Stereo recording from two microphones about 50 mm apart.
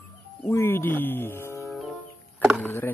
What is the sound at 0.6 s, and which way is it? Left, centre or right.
Speech, left.